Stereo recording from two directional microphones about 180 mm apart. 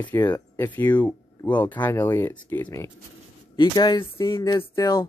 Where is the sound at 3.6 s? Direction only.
25° left (ahead or behind).